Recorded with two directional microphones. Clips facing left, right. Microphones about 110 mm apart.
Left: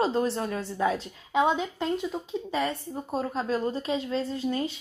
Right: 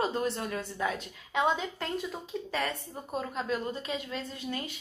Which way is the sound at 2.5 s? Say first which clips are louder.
Left 5 dB; 30° left (ahead or behind).